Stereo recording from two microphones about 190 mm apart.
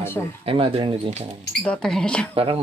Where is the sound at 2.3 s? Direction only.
30° right (ahead or behind).